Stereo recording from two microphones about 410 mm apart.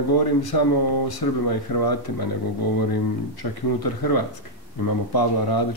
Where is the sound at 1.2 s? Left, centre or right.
Left.